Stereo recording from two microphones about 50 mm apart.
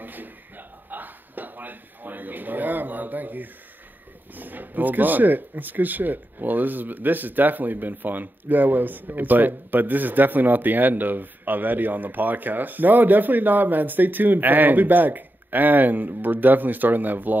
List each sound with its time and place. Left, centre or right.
0.0 s speech: right